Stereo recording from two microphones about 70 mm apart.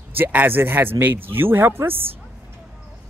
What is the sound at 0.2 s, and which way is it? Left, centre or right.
Speech, right.